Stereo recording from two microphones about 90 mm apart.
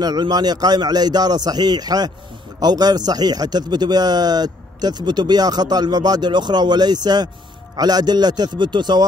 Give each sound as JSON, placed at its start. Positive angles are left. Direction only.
{"t": 0.0, "sound": "speech", "side_deg": -50}